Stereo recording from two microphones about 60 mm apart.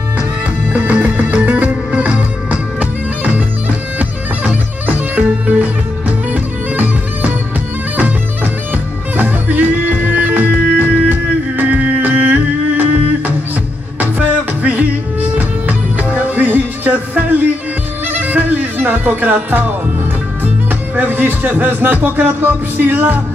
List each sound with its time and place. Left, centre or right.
0.7 s music: right
9.1 s music: right
13.9 s music: right
20.9 s a man's voice: right